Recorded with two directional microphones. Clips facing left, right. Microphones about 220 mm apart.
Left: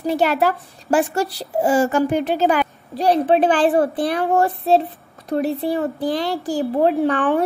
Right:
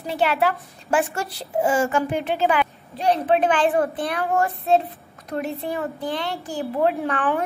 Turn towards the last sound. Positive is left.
turn(degrees=30)  # may be behind; listen again after turning